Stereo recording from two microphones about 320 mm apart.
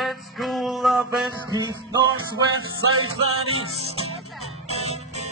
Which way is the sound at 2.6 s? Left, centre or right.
Right.